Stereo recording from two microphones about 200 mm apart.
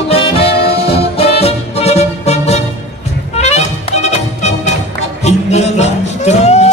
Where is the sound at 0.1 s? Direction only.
30° left (ahead or behind).